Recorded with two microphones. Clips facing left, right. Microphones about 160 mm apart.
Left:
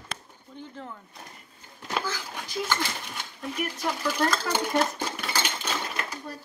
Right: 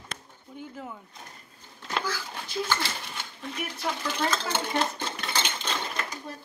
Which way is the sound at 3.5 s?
5° left (ahead or behind).